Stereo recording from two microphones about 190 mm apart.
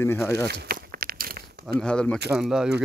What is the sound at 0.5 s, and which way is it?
Crumpling, 55° right (ahead or behind).